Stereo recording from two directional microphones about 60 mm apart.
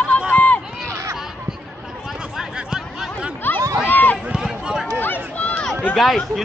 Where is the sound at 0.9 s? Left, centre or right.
Right.